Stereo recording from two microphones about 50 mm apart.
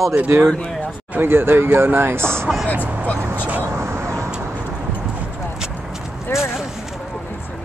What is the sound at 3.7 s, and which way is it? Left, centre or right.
Vehicle, right.